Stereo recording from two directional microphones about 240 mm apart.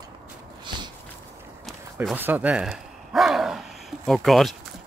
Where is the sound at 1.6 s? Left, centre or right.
Centre.